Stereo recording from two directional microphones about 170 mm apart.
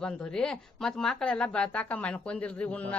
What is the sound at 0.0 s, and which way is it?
Speech, 5° left (ahead or behind).